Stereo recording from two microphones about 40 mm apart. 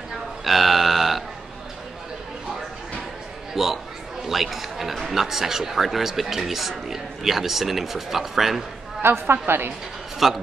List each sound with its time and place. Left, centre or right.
0.4 s burping: centre
3.5 s a sound: centre
4.9 s speech: centre
9.0 s a woman's voice: right
10.1 s a man's voice: centre